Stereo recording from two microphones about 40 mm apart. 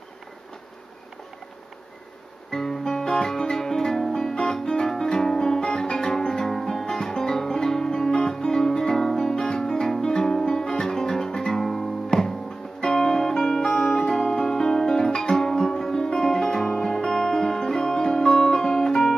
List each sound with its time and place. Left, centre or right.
2.5 s music: centre